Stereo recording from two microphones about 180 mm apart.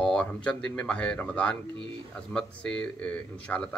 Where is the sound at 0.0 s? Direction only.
5° left (ahead or behind).